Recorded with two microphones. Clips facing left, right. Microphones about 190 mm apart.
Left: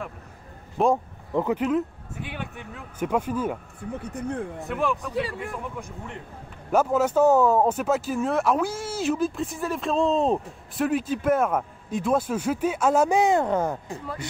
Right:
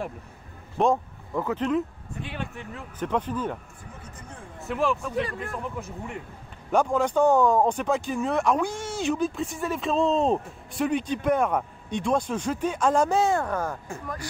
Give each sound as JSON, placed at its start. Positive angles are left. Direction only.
{"t": 0.8, "sound": "speech", "side_deg": 5}
{"t": 1.3, "sound": "speech", "side_deg": 20}
{"t": 1.6, "sound": "speech", "side_deg": 5}
{"t": 4.0, "sound": "speech", "side_deg": 65}
{"t": 4.6, "sound": "speech", "side_deg": 0}
{"t": 5.8, "sound": "speech", "side_deg": -5}
{"t": 6.7, "sound": "speech", "side_deg": 5}